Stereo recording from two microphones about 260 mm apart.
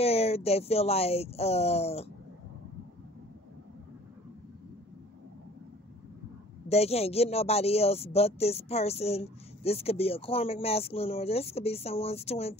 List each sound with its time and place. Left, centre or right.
0.0 s speech: left
6.7 s speech: left